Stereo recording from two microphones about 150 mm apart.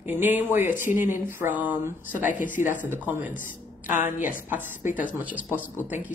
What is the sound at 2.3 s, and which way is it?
Speech, 60° left (ahead or behind).